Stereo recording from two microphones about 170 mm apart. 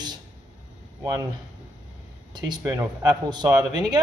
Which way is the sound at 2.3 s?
25° right (ahead or behind).